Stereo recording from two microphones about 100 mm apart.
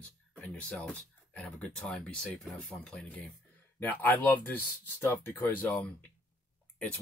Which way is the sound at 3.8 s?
15° left (ahead or behind).